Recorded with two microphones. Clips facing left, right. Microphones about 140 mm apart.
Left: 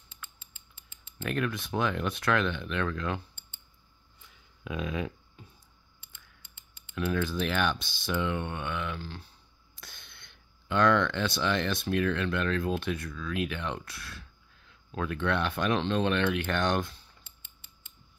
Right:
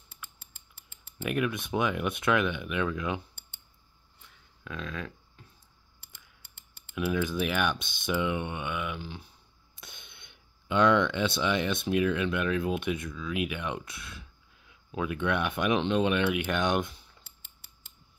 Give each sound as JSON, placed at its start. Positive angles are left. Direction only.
{"t": 0.1, "sound": "creak", "side_deg": -70}
{"t": 1.1, "sound": "speech", "side_deg": -10}
{"t": 4.6, "sound": "speech", "side_deg": 15}
{"t": 7.0, "sound": "speech", "side_deg": -10}
{"t": 17.2, "sound": "mechanisms", "side_deg": -70}